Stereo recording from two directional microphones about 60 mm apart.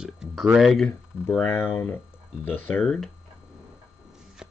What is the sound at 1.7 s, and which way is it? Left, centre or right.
Speech, left.